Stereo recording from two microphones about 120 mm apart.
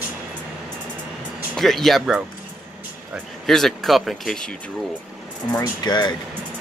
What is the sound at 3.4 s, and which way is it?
Speech, 5° left (ahead or behind).